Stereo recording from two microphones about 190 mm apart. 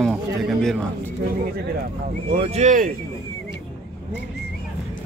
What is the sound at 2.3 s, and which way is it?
Speech, 35° right (ahead or behind).